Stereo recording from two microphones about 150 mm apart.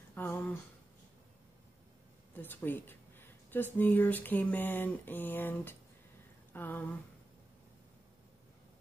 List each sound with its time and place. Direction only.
0.1 s speech: 15° left (ahead or behind)
2.3 s speech: 10° left (ahead or behind)